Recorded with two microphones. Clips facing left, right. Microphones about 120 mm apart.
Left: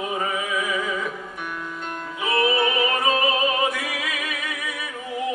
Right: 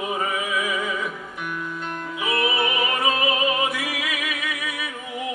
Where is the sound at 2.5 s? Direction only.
5° right (ahead or behind).